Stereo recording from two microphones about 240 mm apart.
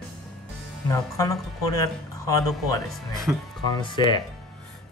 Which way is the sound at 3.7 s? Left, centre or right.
Centre.